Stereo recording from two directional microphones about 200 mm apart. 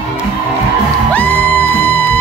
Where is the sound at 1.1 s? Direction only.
10° left (ahead or behind).